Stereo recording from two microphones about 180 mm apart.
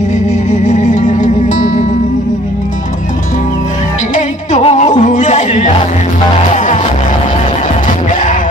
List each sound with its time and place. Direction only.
0.5 s music: 40° left (ahead or behind)
4.1 s music: 40° left (ahead or behind)